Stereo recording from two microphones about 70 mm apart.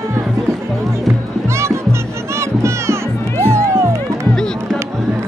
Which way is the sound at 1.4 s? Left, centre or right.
Right.